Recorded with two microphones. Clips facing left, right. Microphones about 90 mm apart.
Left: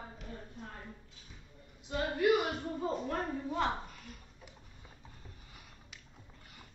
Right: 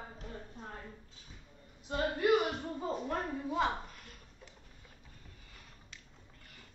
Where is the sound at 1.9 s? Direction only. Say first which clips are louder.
Right 1 dB; 50° right (ahead or behind).